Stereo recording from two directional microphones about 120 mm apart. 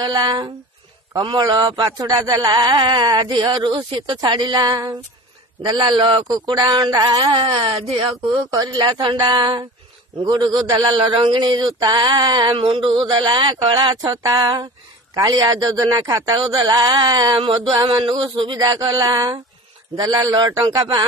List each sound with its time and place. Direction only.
0.0 s a man's voice: 35° right (ahead or behind)
6.2 s a man's voice: 30° right (ahead or behind)
7.3 s a man's voice: 50° right (ahead or behind)
8.5 s a man's voice: 35° right (ahead or behind)